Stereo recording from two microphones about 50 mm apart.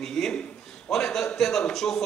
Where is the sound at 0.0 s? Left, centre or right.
Centre.